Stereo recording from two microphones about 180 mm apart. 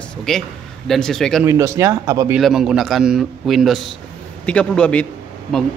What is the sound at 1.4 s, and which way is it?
Speech, 15° right (ahead or behind).